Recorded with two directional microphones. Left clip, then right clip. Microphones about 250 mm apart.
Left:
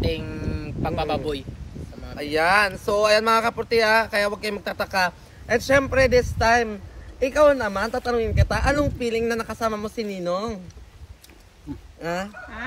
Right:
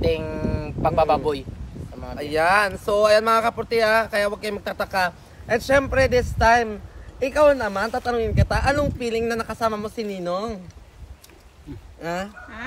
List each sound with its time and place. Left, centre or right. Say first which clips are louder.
0.0 s a sound: right 5 dB; right
2.1 s speech: even; centre
12.0 s speech: even; centre